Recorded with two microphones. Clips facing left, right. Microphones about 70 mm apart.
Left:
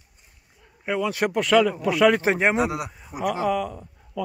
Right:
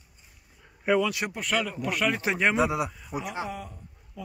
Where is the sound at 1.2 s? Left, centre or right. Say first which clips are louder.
Left 10 dB; left.